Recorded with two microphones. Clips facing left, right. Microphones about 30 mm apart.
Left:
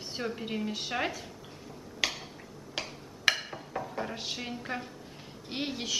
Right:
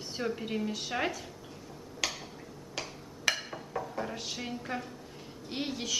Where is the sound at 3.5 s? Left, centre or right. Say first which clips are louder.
Even; centre.